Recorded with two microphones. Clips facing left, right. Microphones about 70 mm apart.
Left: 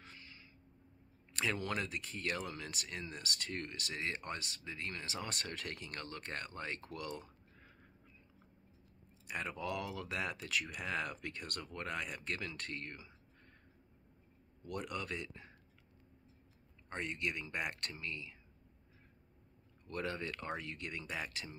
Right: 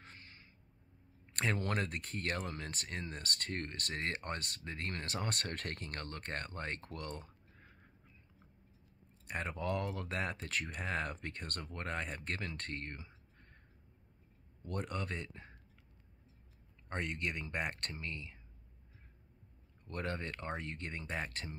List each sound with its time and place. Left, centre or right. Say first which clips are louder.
0.0 s a sound: even; right
1.2 s speech: right 2 dB; right
9.3 s speech: right 2 dB; right
14.6 s speech: right 1 dB; right
16.9 s speech: right 1 dB; right
19.9 s speech: even; right